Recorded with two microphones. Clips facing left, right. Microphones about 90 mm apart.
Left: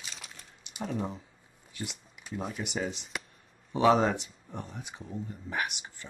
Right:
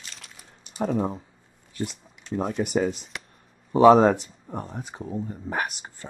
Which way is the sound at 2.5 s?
45° right (ahead or behind).